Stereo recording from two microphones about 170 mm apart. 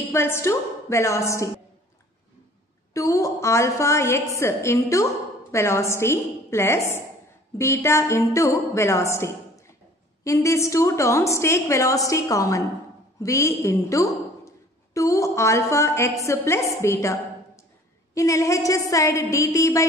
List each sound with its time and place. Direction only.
0.1 s a woman's voice: 15° left (ahead or behind)
2.9 s a woman's voice: 20° left (ahead or behind)